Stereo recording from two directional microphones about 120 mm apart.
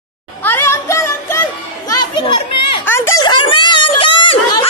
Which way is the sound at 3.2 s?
40° left (ahead or behind).